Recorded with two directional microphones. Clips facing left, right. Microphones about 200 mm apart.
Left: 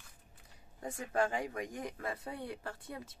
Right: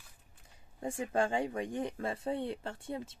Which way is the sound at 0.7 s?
30° right (ahead or behind).